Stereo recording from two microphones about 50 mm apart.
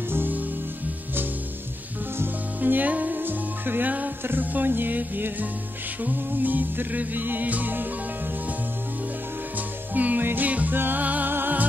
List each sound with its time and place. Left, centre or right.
0.1 s music: right
2.6 s music: right
9.9 s music: right